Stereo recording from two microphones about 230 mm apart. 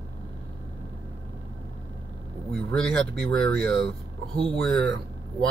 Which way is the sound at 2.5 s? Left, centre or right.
Centre.